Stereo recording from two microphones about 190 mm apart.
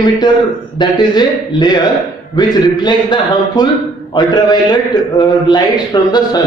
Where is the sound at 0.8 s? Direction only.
25° left (ahead or behind).